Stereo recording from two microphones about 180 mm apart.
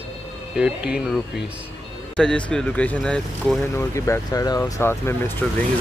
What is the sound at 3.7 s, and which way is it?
Speech, 15° left (ahead or behind).